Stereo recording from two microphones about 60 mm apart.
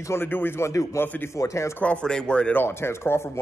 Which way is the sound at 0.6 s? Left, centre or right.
Left.